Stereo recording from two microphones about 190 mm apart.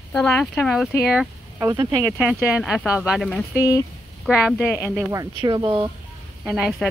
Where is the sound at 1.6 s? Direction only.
15° right (ahead or behind).